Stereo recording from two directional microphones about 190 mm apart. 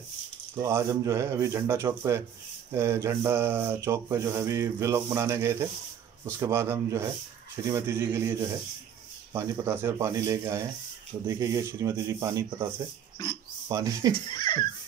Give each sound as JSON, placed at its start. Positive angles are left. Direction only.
{"t": 0.6, "sound": "speech", "side_deg": -15}
{"t": 13.7, "sound": "speech", "side_deg": -20}
{"t": 14.1, "sound": "speech", "side_deg": 25}